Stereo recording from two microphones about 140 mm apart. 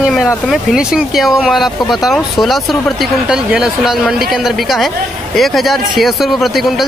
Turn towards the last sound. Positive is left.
turn(degrees=0)  # may be behind; listen again after turning